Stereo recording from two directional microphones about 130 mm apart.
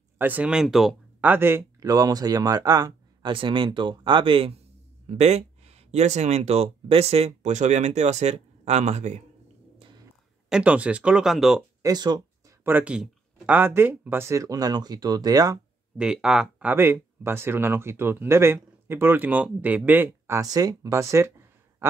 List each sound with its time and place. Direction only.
0.2 s speech: 10° right (ahead or behind)
1.2 s speech: 15° right (ahead or behind); by 4.6 s 45° right (ahead or behind)
5.0 s speech: 55° right (ahead or behind)
10.5 s speech: 10° right (ahead or behind)
11.8 s a sound: 30° right (ahead or behind)
12.6 s speech: 10° right (ahead or behind); by 15.6 s 30° right (ahead or behind)
16.0 s speech: 5° right (ahead or behind)